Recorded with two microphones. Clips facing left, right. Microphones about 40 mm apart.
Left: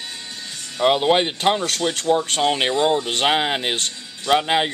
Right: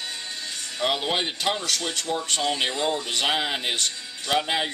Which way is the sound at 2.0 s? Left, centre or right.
Left.